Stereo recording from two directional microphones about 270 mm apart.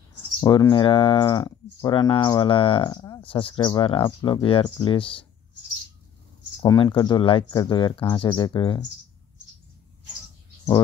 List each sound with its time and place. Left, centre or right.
0.4 s speech: centre
6.6 s speech: centre